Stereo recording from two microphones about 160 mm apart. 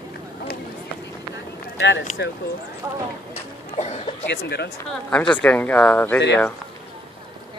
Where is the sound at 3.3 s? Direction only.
45° left (ahead or behind).